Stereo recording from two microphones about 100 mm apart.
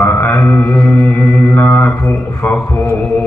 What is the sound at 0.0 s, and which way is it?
Mantra, 20° left (ahead or behind).